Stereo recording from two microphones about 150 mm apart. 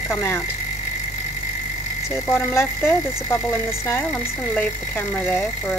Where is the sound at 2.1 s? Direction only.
15° left (ahead or behind).